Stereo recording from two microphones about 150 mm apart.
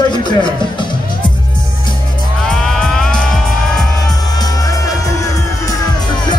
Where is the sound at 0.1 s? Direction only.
30° left (ahead or behind).